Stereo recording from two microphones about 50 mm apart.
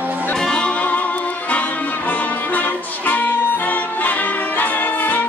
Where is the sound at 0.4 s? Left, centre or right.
Centre.